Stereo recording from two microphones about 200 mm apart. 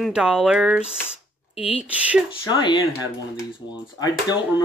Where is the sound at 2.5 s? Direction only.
20° left (ahead or behind).